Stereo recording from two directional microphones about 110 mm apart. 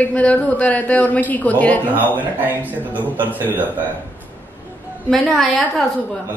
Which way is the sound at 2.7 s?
15° right (ahead or behind).